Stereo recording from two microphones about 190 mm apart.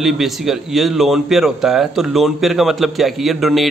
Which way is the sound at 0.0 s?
Centre (ahead or behind).